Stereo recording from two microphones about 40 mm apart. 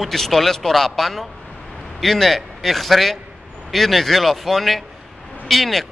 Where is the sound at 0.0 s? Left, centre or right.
Centre.